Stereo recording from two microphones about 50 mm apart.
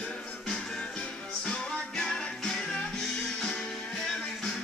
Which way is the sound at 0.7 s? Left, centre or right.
Centre.